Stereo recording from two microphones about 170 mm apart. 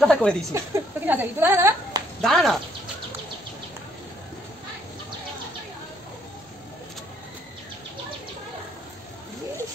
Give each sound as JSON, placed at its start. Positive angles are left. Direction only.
{"t": 0.0, "sound": "speech", "side_deg": 5}
{"t": 0.5, "sound": "a woman's voice", "side_deg": -15}
{"t": 2.2, "sound": "speech", "side_deg": 0}